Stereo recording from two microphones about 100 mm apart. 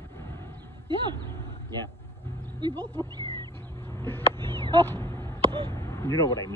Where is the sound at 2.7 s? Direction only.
20° left (ahead or behind).